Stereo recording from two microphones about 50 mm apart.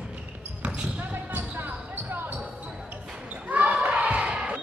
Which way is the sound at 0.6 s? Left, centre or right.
Right.